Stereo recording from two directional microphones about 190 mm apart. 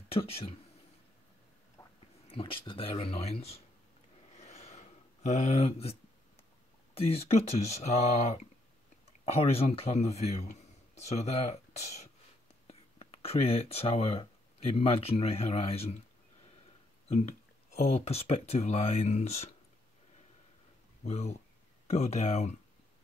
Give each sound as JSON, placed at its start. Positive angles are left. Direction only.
{"t": 0.1, "sound": "speech", "side_deg": 30}
{"t": 1.8, "sound": "a sound", "side_deg": 15}
{"t": 2.2, "sound": "speech", "side_deg": 30}
{"t": 4.4, "sound": "a sound", "side_deg": 35}
{"t": 6.9, "sound": "speech", "side_deg": 30}
{"t": 17.9, "sound": "speech", "side_deg": 35}
{"t": 21.0, "sound": "speech", "side_deg": 35}